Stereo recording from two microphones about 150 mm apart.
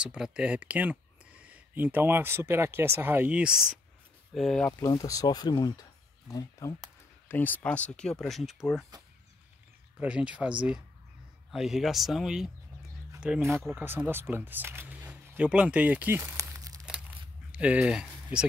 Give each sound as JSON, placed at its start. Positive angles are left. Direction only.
{"t": 0.0, "sound": "speech", "side_deg": -5}
{"t": 4.6, "sound": "speech", "side_deg": 20}
{"t": 7.2, "sound": "speech", "side_deg": 10}
{"t": 9.9, "sound": "speech", "side_deg": -5}
{"t": 11.5, "sound": "speech", "side_deg": 0}
{"t": 17.5, "sound": "speech", "side_deg": -10}